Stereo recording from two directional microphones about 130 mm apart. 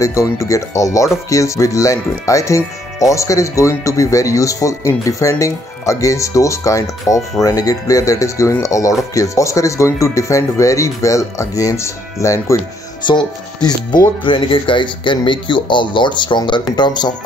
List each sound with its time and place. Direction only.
0.0 s speech: 25° left (ahead or behind)
13.0 s speech: 35° left (ahead or behind)